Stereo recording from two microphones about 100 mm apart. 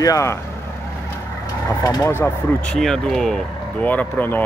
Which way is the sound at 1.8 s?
35° left (ahead or behind).